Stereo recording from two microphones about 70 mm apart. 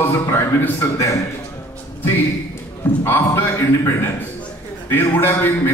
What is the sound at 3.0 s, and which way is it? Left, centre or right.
Speech, left.